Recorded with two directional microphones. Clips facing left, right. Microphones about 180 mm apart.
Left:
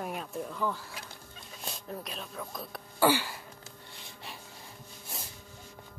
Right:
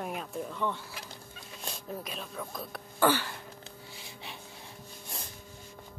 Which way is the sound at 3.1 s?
10° left (ahead or behind).